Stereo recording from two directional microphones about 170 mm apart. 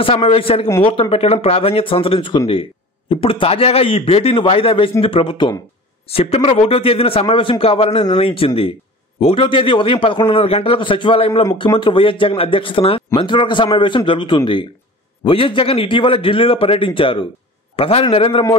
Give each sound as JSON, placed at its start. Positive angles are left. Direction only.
{"t": 0.0, "sound": "a man's voice", "side_deg": 35}